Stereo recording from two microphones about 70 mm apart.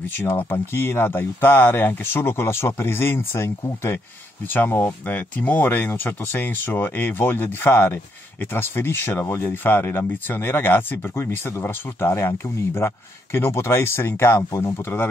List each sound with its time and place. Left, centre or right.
0.3 s speech: left
4.5 s speech: left